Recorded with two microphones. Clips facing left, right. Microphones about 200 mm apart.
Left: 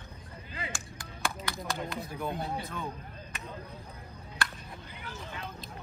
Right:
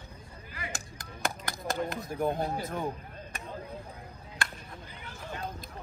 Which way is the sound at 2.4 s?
45° right (ahead or behind).